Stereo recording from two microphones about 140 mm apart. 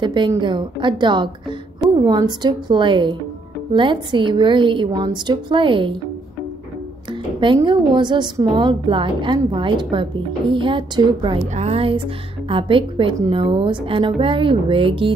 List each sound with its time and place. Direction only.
0.0 s speech: 35° right (ahead or behind)
7.1 s speech: 35° right (ahead or behind)
11.4 s a woman's voice: 50° right (ahead or behind)